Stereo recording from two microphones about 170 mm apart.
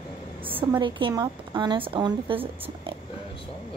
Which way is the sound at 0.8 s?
25° right (ahead or behind).